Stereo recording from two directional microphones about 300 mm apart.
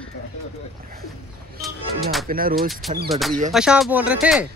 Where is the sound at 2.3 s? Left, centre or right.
Right.